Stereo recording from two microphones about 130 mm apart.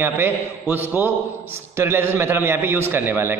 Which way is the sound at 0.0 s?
15° right (ahead or behind).